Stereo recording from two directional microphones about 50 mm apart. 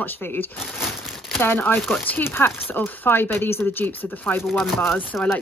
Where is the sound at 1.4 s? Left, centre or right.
Left.